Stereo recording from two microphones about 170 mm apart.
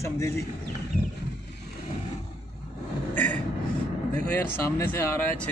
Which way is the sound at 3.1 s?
10° left (ahead or behind).